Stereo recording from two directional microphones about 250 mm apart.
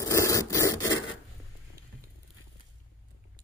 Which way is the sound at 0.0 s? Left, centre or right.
Centre.